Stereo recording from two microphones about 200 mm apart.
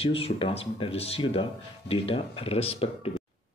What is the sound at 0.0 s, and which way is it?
Speech, 30° left (ahead or behind).